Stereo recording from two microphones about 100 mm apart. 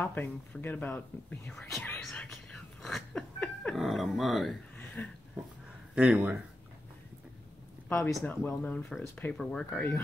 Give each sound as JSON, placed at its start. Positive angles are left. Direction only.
{"t": 0.0, "sound": "speech", "side_deg": 20}
{"t": 1.5, "sound": "speech", "side_deg": 5}
{"t": 2.1, "sound": "a sound", "side_deg": 5}
{"t": 3.7, "sound": "speech", "side_deg": 0}
{"t": 5.0, "sound": "speech", "side_deg": 15}
{"t": 5.9, "sound": "speech", "side_deg": -10}
{"t": 7.9, "sound": "speech", "side_deg": 5}
{"t": 8.3, "sound": "speech", "side_deg": 15}